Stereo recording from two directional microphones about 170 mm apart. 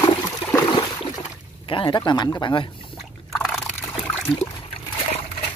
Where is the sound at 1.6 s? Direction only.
30° left (ahead or behind).